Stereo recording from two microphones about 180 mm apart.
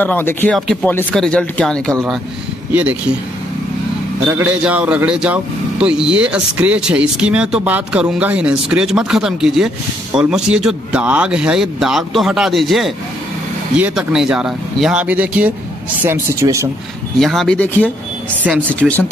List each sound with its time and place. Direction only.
0.0 s speech: 10° left (ahead or behind)
2.7 s speech: 10° right (ahead or behind)
4.3 s speech: 5° right (ahead or behind)
17.2 s speech: centre (ahead or behind)